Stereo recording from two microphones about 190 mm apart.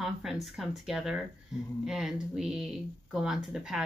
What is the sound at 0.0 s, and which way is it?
Speech, centre (ahead or behind).